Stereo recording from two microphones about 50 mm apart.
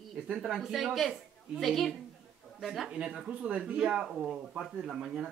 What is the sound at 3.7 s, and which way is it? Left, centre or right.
Speech, centre.